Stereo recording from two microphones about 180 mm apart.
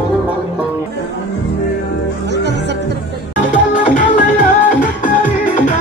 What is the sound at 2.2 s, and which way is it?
Music, 70° right (ahead or behind).